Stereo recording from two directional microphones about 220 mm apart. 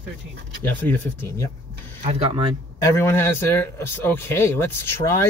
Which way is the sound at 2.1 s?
30° right (ahead or behind).